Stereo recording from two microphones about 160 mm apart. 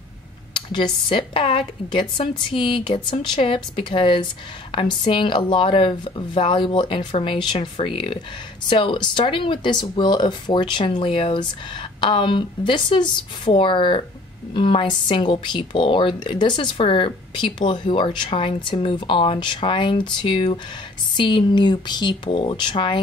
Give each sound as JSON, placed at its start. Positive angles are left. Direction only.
{"t": 0.6, "sound": "a woman's voice", "side_deg": 30}